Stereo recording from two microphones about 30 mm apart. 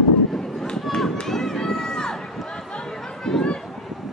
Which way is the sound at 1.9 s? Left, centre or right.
Left.